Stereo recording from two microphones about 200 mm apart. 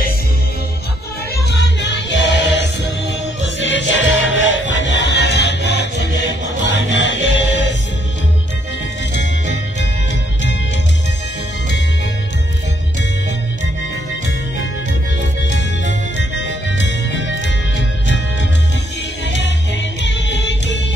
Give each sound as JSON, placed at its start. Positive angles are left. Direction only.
{"t": 1.3, "sound": "music", "side_deg": 60}
{"t": 9.1, "sound": "music", "side_deg": 60}
{"t": 15.5, "sound": "music", "side_deg": 65}
{"t": 19.2, "sound": "music", "side_deg": 65}